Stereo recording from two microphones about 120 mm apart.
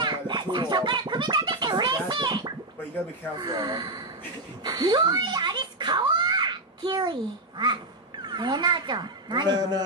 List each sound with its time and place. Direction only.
0.0 s music: 35° right (ahead or behind)
3.3 s a child's voice: 35° right (ahead or behind)